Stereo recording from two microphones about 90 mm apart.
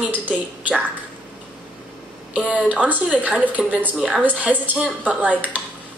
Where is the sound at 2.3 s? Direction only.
10° right (ahead or behind).